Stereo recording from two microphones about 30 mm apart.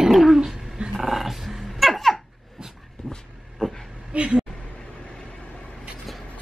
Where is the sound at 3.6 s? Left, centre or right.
Left.